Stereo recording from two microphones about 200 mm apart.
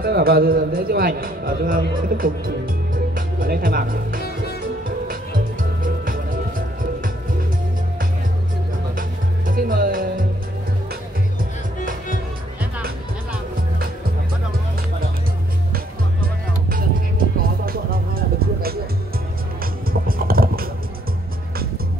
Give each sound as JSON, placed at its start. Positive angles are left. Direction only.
{"t": 0.0, "sound": "a man's voice", "side_deg": -50}
{"t": 4.8, "sound": "music", "side_deg": -45}
{"t": 9.5, "sound": "music", "side_deg": -45}
{"t": 16.7, "sound": "music", "side_deg": -45}